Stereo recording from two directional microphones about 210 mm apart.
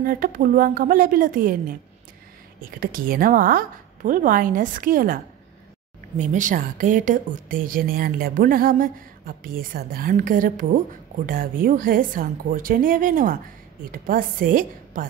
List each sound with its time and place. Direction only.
0.0 s a woman's voice: 45° right (ahead or behind)
2.8 s a woman's voice: 45° right (ahead or behind)